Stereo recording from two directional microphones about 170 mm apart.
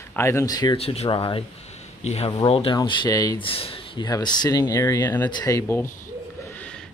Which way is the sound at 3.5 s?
35° left (ahead or behind).